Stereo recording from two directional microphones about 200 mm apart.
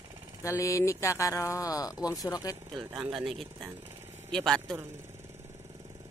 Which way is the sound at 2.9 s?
Centre (ahead or behind).